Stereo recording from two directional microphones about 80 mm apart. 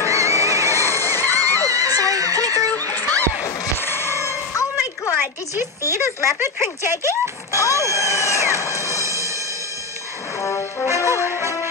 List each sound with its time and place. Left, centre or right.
0.3 s neigh: left
1.7 s music: right
2.5 s music: left
3.8 s a sound: left
5.2 s a sound: right
6.8 s speech: right
7.5 s music: left
10.4 s brass instrument: left
11.1 s music: left